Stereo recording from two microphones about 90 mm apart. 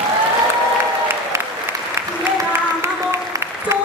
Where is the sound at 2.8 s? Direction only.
30° right (ahead or behind).